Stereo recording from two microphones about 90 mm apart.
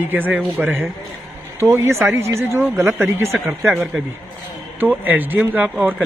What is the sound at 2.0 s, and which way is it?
Speech, 30° right (ahead or behind).